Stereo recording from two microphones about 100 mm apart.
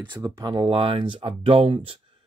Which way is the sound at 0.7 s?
65° right (ahead or behind).